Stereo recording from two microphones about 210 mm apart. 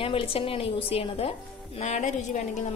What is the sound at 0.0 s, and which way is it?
A woman's voice, 25° left (ahead or behind).